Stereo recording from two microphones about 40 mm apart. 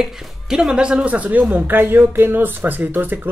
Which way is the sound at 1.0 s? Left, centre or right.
Right.